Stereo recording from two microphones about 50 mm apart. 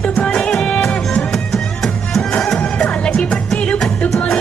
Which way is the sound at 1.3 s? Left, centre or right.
Centre.